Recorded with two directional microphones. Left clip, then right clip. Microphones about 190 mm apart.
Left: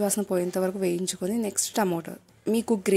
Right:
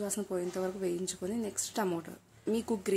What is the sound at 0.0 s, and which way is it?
A woman's voice, 40° left (ahead or behind).